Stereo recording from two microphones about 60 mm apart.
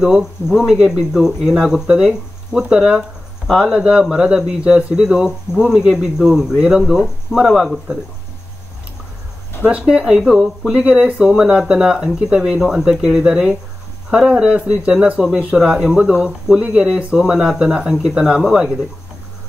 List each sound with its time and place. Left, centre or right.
0.0 s speech: centre
9.7 s speech: centre
10.9 s speech: right
15.1 s speech: centre